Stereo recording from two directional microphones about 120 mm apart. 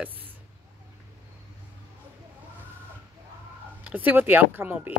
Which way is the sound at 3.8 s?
15° right (ahead or behind).